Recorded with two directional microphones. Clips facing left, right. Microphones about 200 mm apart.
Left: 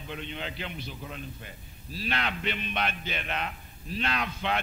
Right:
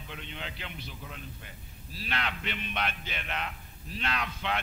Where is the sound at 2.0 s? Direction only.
30° left (ahead or behind).